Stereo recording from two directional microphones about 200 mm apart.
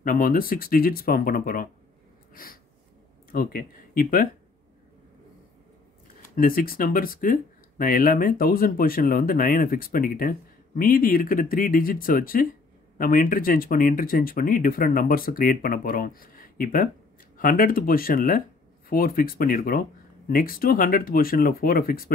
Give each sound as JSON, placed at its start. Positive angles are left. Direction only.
{"t": 0.0, "sound": "speech", "side_deg": 45}
{"t": 2.3, "sound": "a sound", "side_deg": 45}
{"t": 3.3, "sound": "speech", "side_deg": 45}
{"t": 6.3, "sound": "speech", "side_deg": 45}